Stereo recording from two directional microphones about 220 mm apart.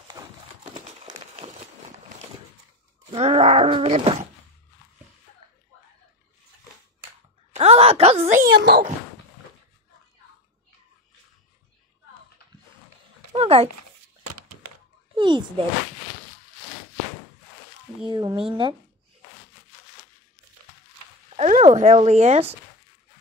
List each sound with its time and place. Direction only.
0.2 s horse: 15° right (ahead or behind)
0.7 s a sound: 30° right (ahead or behind)
1.4 s run: 30° right (ahead or behind)
3.1 s groan: 25° right (ahead or behind)
7.5 s wail: 25° right (ahead or behind); by 8.9 s 45° right (ahead or behind)
13.3 s a sound: 25° right (ahead or behind)
15.1 s a sound: 20° right (ahead or behind)
18.0 s groan: 20° right (ahead or behind)
21.4 s speech: 30° right (ahead or behind)